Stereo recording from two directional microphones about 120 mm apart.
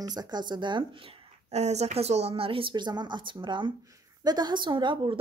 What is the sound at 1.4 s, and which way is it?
A woman's voice, 65° right (ahead or behind).